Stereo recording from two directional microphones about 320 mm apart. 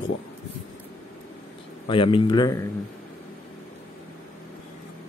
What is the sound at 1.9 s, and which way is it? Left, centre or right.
Speech, centre.